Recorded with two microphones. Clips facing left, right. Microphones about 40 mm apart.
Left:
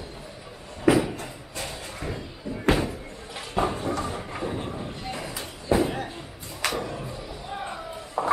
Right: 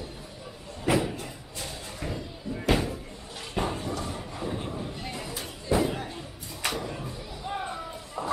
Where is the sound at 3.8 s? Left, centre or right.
Left.